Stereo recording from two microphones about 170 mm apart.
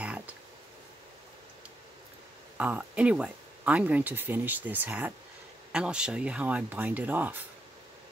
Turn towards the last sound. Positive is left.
turn(degrees=-10)  # may be behind; listen again after turning